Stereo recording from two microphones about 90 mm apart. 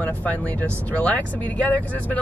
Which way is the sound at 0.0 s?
15° left (ahead or behind).